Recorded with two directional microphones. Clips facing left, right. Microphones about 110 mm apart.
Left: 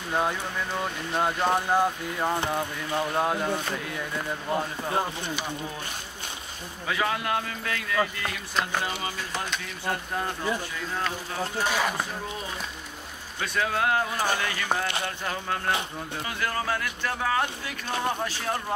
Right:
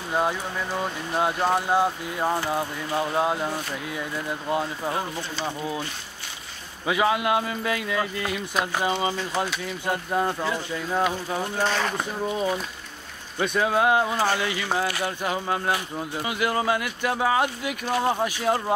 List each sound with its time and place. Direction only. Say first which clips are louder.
0.1 s speech: right 2 dB; 5° right (ahead or behind)
6.9 s speech: right 5 dB; 15° right (ahead or behind)
11.6 s speech: right 1 dB; 10° left (ahead or behind)
13.4 s speech: right 5 dB; 20° right (ahead or behind)